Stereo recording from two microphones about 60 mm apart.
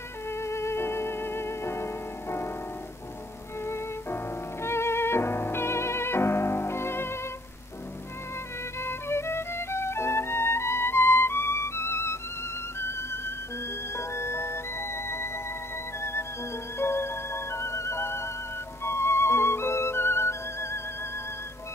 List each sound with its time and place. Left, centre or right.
0.3 s music: left
3.6 s music: left
8.8 s music: left